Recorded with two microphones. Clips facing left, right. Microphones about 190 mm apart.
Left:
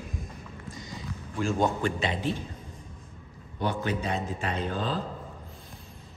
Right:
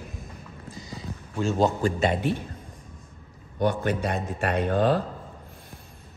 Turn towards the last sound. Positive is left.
turn(degrees=-60)  # may be behind; listen again after turning